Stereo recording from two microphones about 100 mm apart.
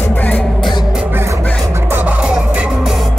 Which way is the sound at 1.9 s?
15° right (ahead or behind).